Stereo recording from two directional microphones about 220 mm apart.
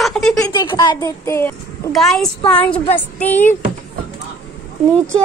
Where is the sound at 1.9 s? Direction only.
Centre (ahead or behind).